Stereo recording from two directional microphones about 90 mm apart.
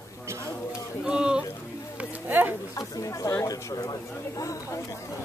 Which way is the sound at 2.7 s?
40° left (ahead or behind).